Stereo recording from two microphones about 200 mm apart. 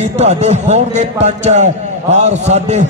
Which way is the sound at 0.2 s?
35° right (ahead or behind).